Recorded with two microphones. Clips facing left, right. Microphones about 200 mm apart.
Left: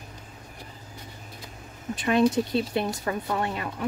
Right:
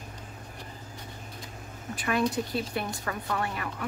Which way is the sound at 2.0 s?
25° left (ahead or behind).